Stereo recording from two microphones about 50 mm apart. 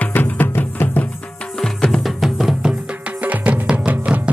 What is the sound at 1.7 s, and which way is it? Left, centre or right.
Music, centre.